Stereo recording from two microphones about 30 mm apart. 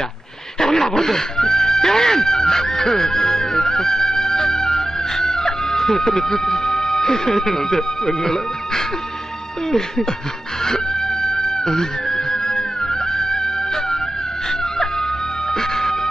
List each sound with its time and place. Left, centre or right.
0.6 s music: centre
9.7 s speech: centre
11.2 s chicken: centre
12.3 s music: centre